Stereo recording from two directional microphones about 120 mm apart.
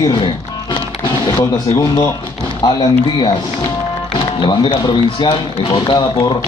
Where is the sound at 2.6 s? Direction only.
35° left (ahead or behind).